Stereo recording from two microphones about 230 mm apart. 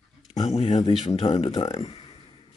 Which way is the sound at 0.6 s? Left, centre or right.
Left.